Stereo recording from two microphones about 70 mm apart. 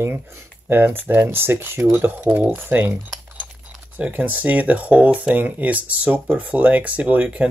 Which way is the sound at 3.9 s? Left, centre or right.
Right.